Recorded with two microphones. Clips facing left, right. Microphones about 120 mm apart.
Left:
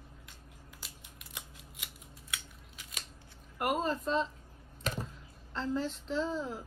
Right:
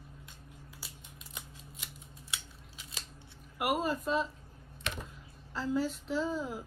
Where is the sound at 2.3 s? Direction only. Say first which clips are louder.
Even; 25° right (ahead or behind).